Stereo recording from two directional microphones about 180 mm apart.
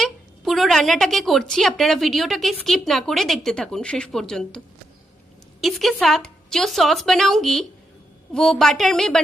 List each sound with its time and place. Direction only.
0.0 s a woman's voice: centre (ahead or behind)
5.6 s a woman's voice: centre (ahead or behind)